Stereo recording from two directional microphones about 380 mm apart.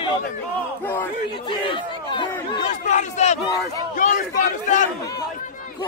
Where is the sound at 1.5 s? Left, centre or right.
Centre.